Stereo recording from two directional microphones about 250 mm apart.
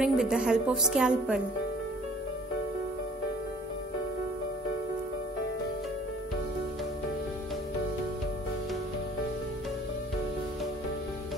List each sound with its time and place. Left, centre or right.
0.0 s a woman's voice: centre